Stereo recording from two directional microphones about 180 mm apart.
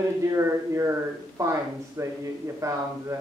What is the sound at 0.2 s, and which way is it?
Speech, 15° right (ahead or behind).